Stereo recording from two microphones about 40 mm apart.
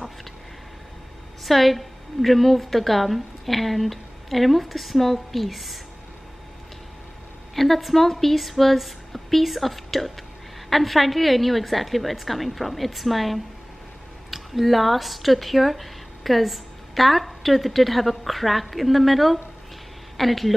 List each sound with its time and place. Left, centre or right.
1.4 s a woman's voice: centre
7.5 s a woman's voice: centre